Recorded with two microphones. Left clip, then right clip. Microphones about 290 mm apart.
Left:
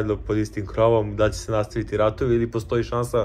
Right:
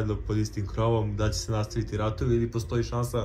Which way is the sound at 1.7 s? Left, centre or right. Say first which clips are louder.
Left 10 dB; centre.